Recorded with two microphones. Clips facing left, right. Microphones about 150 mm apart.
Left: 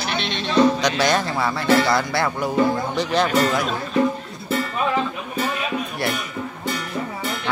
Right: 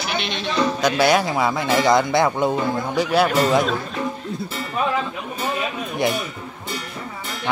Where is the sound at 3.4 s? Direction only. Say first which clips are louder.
Right 3 dB; 20° right (ahead or behind).